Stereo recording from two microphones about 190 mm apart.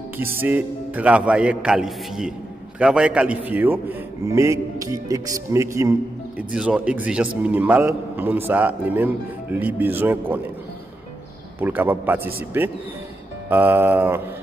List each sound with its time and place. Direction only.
0.2 s a man's voice: 10° right (ahead or behind)
6.5 s a man's voice: 5° right (ahead or behind)
11.6 s a man's voice: 10° right (ahead or behind)